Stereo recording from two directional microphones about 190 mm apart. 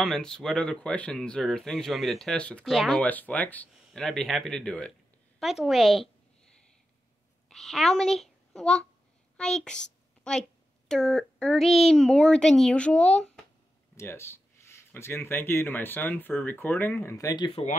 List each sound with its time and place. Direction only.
0.0 s speech: 5° left (ahead or behind)
7.4 s a child's voice: centre (ahead or behind); by 17.5 s 15° left (ahead or behind)
17.5 s speech: 30° left (ahead or behind)